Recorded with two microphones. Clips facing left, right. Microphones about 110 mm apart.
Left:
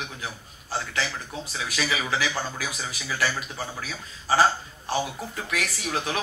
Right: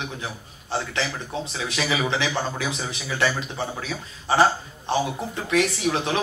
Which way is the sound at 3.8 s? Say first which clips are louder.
Right 4 dB; 25° right (ahead or behind).